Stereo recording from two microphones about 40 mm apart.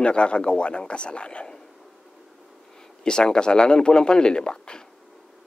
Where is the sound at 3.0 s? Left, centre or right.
Left.